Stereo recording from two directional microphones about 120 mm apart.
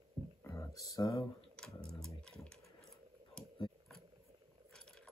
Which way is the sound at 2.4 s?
5° left (ahead or behind).